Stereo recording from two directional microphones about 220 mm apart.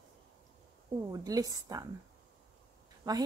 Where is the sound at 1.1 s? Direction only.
15° right (ahead or behind).